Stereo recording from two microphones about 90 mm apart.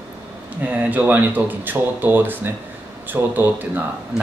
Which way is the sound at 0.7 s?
15° right (ahead or behind).